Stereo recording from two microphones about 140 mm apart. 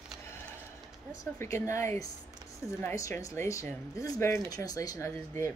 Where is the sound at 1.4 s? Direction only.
20° left (ahead or behind).